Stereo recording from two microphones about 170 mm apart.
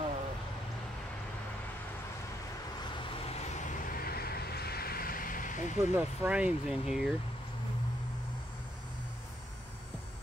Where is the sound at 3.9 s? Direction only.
60° left (ahead or behind).